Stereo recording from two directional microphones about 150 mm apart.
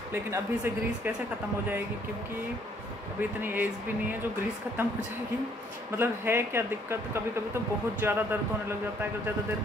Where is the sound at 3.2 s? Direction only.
10° right (ahead or behind).